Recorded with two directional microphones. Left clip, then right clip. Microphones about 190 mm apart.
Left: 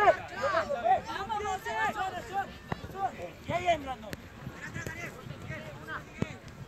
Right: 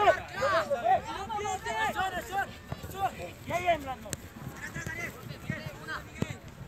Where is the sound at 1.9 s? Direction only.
35° right (ahead or behind).